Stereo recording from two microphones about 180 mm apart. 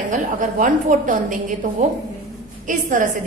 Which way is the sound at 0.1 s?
45° right (ahead or behind).